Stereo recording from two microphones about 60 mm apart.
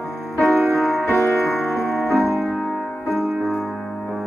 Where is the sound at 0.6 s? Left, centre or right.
Centre.